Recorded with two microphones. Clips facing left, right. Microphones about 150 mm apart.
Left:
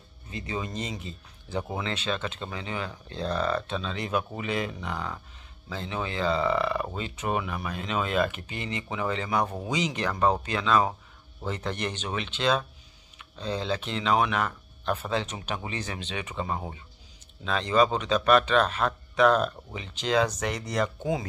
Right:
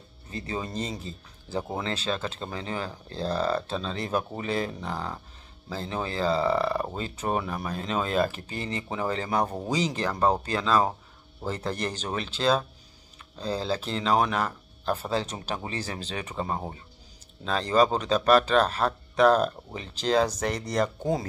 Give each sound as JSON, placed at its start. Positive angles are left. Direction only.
{"t": 0.3, "sound": "speech", "side_deg": -35}